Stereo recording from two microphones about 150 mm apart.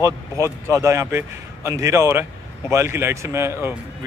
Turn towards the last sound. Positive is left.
turn(degrees=-15)  # may be behind; listen again after turning